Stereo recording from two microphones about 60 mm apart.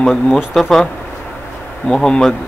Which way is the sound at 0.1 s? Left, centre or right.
Centre.